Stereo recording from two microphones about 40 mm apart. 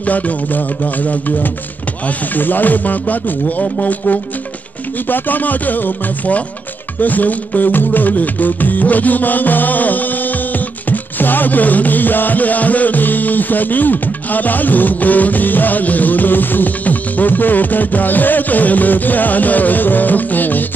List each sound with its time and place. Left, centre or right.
0.0 s music: left
5.0 s music: left